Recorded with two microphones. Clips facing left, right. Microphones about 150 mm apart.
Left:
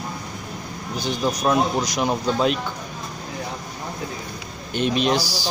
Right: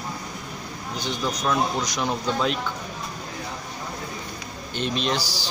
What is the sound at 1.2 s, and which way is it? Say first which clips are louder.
Speech: left 4 dB; 25° left (ahead or behind).